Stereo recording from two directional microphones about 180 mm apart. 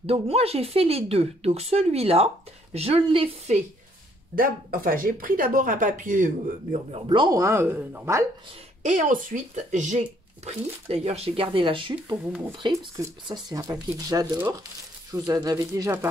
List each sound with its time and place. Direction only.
0.0 s speech: 35° right (ahead or behind)
4.4 s speech: 55° right (ahead or behind)
6.9 s speech: 25° right (ahead or behind)
8.8 s speech: 45° right (ahead or behind); by 16.1 s 15° right (ahead or behind)